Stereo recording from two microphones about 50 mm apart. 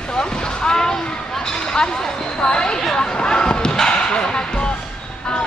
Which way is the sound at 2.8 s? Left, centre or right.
Centre.